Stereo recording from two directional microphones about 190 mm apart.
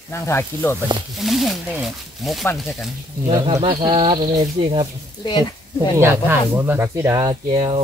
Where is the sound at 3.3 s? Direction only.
20° right (ahead or behind).